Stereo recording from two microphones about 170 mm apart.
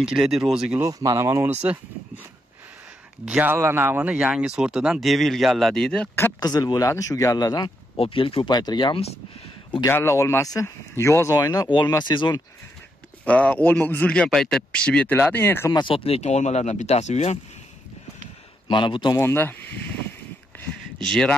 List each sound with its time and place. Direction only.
0.0 s speech: 5° right (ahead or behind)
0.8 s speech: 20° right (ahead or behind)
3.3 s speech: 10° right (ahead or behind); by 9.1 s 30° left (ahead or behind)
9.8 s speech: 15° left (ahead or behind)
13.2 s a man's voice: 10° left (ahead or behind)
15.8 s speech: 35° left (ahead or behind)
18.7 s speech: 30° left (ahead or behind)
19.1 s a man's voice: 15° left (ahead or behind)
21.0 s speech: 5° left (ahead or behind)